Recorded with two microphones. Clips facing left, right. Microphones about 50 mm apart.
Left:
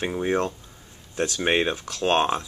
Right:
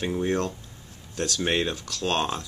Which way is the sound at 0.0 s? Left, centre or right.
Centre.